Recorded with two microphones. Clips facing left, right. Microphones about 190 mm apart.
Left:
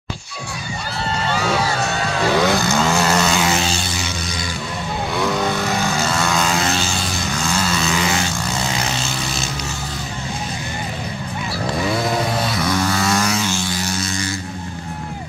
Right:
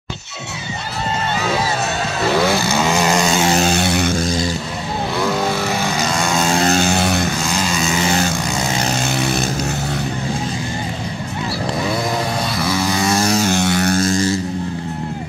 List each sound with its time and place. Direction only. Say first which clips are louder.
2.4 s vehicle: even; 5° right (ahead or behind)
3.4 s a sound: right 4 dB; 40° right (ahead or behind)
3.7 s a sound: right 9 dB; 60° right (ahead or behind)
5.2 s vehicle: right 1 dB; 5° right (ahead or behind)
6.5 s vehicle: right 5 dB; 45° right (ahead or behind); by 7.2 s 65° right (ahead or behind)
7.5 s vehicle: right 1 dB; 15° right (ahead or behind)
12.5 s vehicle: right 1 dB; 5° right (ahead or behind)
13.2 s vehicle: right 4 dB; 35° right (ahead or behind)
13.5 s vehicle: right 7 dB; 65° right (ahead or behind); by 14.3 s 45° right (ahead or behind)